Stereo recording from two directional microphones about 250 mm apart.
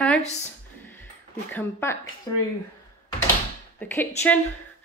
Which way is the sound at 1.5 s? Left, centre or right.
Centre.